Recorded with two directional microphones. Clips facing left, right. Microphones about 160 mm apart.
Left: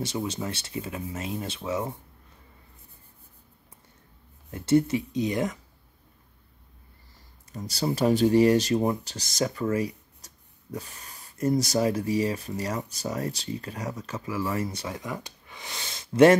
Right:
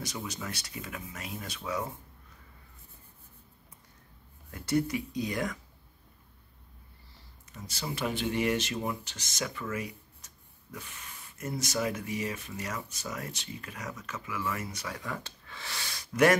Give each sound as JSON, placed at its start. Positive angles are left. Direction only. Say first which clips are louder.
{"t": 0.0, "sound": "speech", "louder": "left 8 dB", "side_deg": 30}
{"t": 4.5, "sound": "speech", "louder": "left 7 dB", "side_deg": 25}
{"t": 7.5, "sound": "speech", "louder": "left 9 dB", "side_deg": 35}